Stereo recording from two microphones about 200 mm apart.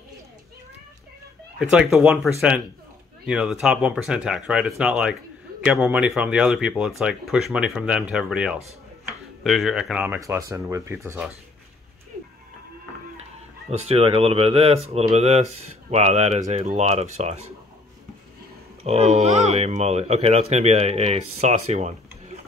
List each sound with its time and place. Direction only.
1.6 s speech: 5° right (ahead or behind)
13.7 s speech: 30° right (ahead or behind)
18.9 s speech: 35° right (ahead or behind)